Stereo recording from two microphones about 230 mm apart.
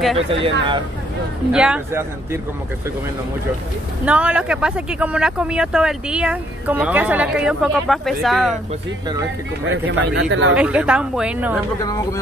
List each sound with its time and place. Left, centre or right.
0.3 s speech: right
1.5 s a man's voice: centre
4.0 s speech: centre
9.7 s speech: right
10.5 s speech: centre
11.8 s speech: centre